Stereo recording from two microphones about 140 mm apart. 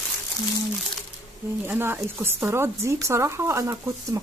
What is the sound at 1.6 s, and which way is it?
Speech, 15° right (ahead or behind).